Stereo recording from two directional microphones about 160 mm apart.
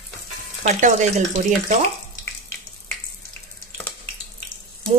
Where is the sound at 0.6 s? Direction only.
45° right (ahead or behind).